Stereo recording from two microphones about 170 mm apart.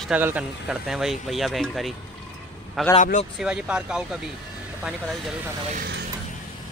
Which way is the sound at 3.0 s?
45° left (ahead or behind).